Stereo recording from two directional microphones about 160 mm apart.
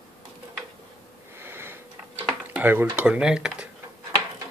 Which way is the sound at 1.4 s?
15° right (ahead or behind).